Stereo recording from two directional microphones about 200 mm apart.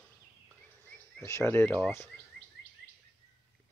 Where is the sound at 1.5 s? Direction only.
10° left (ahead or behind).